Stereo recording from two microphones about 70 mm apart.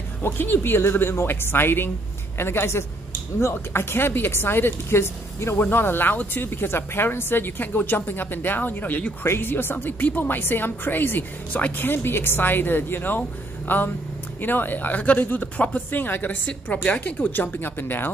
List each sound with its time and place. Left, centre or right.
0.2 s speech: left
9.2 s a woman's voice: left